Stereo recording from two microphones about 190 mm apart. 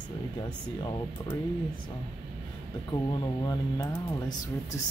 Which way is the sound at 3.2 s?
20° left (ahead or behind).